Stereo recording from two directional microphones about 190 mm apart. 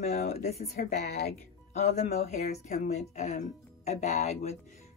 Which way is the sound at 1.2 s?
35° left (ahead or behind).